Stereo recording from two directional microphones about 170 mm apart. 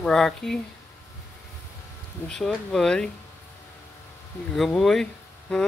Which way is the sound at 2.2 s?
Centre (ahead or behind).